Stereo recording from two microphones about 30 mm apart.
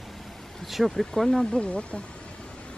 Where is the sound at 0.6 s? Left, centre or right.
Centre.